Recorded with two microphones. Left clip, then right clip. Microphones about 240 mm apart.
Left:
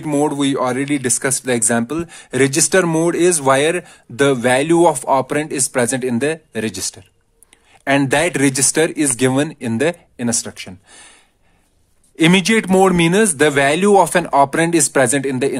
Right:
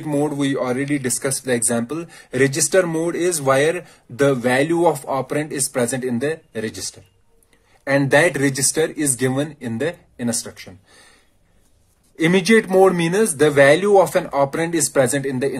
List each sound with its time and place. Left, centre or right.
0.0 s a man's voice: left
7.8 s speech: left
12.2 s a man's voice: left